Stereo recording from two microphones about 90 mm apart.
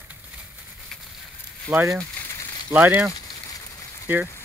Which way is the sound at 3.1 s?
45° left (ahead or behind).